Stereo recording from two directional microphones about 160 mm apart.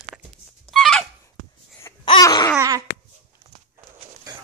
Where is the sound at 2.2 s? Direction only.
20° left (ahead or behind).